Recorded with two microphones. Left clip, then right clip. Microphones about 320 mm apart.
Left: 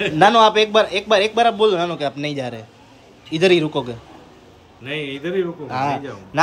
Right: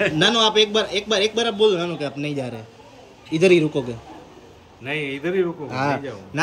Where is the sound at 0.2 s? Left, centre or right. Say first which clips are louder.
Left 6 dB; centre.